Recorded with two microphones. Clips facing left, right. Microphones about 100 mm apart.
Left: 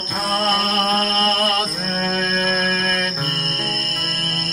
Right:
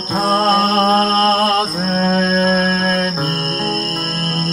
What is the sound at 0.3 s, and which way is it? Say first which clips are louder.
Mantra: right 6 dB; 30° right (ahead or behind).